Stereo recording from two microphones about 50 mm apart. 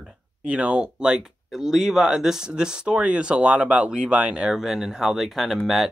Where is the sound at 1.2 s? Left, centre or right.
Centre.